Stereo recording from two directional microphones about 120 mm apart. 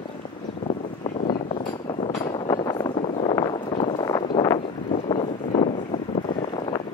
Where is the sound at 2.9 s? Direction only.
60° left (ahead or behind).